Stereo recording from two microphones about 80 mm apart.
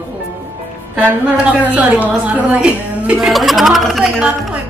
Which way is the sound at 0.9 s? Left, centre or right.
Centre.